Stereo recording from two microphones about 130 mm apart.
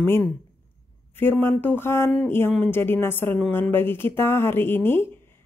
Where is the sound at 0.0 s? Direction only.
15° left (ahead or behind).